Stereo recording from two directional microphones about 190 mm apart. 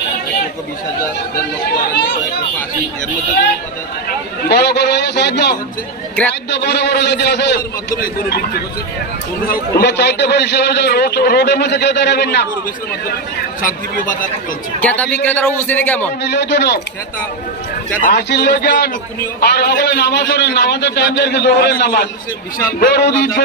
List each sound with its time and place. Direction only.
4.5 s a man's voice: 60° left (ahead or behind)
6.7 s a man's voice: 65° left (ahead or behind)
13.6 s a man's voice: 45° left (ahead or behind)
14.8 s a man's voice: 10° left (ahead or behind)
16.2 s a man's voice: 65° left (ahead or behind)
18.1 s a man's voice: 60° left (ahead or behind)